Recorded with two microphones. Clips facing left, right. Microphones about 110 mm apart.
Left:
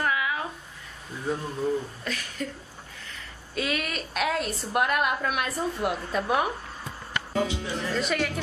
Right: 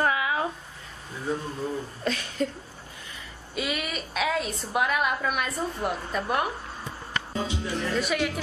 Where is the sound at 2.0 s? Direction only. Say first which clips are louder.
Right 5 dB; 25° right (ahead or behind).